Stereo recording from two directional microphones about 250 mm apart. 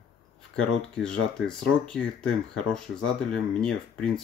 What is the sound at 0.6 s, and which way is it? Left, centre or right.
Speech, centre.